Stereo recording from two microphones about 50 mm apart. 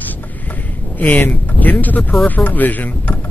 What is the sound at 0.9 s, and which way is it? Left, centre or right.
Speech, left.